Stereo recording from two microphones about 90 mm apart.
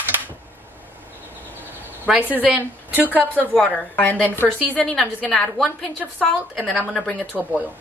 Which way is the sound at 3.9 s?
15° left (ahead or behind).